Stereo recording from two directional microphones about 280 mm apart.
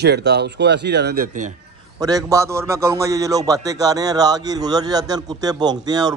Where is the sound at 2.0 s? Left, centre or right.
Centre.